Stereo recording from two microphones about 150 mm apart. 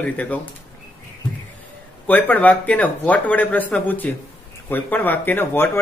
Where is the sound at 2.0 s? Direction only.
10° left (ahead or behind).